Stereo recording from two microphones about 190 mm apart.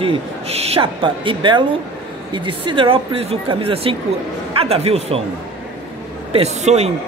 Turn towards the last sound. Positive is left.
turn(degrees=-35)  # may be behind; listen again after turning